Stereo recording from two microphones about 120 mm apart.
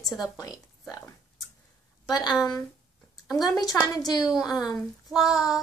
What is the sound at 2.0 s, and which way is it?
A woman's voice, 35° left (ahead or behind).